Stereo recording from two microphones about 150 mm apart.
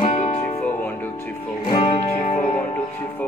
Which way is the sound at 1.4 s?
40° left (ahead or behind).